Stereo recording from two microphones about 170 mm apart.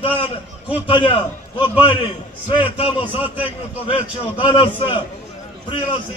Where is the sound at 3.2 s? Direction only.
10° right (ahead or behind).